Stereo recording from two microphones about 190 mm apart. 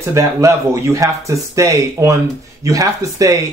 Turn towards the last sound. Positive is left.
turn(degrees=-15)  # may be behind; listen again after turning